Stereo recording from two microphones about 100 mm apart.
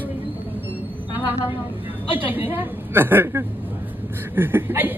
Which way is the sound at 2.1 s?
20° right (ahead or behind).